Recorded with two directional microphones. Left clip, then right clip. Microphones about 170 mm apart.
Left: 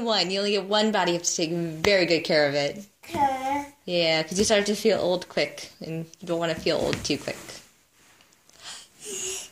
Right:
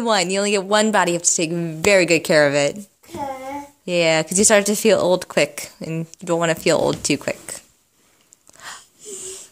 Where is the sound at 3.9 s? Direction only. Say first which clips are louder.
Right 6 dB; 50° right (ahead or behind).